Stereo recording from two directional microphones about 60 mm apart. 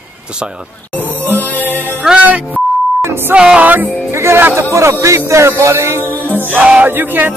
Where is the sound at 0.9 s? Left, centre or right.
Left.